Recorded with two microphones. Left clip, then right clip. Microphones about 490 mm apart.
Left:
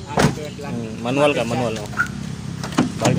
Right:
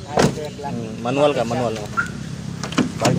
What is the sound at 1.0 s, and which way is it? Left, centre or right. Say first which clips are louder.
Speech: even; right.